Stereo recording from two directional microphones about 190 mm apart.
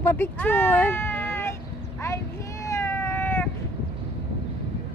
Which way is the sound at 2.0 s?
15° left (ahead or behind).